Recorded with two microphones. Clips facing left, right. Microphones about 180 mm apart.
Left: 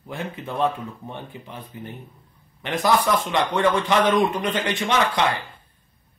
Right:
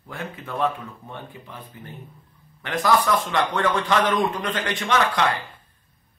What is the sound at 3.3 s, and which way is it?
Speech, 20° left (ahead or behind).